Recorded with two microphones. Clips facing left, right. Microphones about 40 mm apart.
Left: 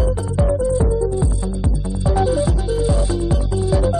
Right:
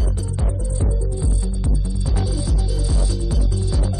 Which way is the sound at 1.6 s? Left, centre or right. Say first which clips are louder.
Left 6 dB; left.